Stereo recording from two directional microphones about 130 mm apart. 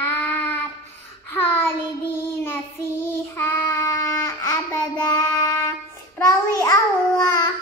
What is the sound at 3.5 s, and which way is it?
Child singing, 15° left (ahead or behind).